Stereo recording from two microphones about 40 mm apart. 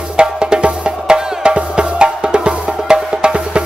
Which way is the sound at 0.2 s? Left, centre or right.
Right.